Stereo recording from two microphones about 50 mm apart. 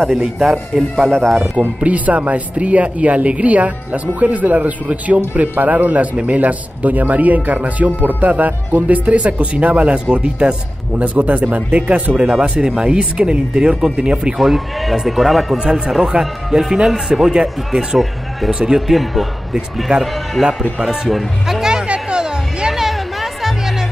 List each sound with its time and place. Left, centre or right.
0.0 s speech: centre
1.8 s speech: right
11.0 s speech: right
14.4 s speech: centre
18.8 s speech: centre
20.4 s speech: centre
20.8 s music: centre
22.7 s music: centre